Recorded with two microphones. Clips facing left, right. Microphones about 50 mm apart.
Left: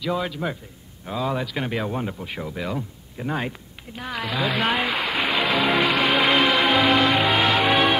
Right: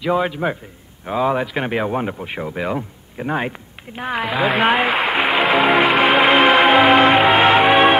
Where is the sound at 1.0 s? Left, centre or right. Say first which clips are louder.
Right 7 dB; right.